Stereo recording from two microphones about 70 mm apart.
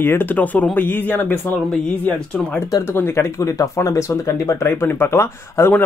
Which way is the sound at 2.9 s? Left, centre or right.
Left.